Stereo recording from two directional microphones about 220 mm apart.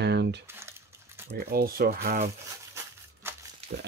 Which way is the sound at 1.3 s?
45° right (ahead or behind).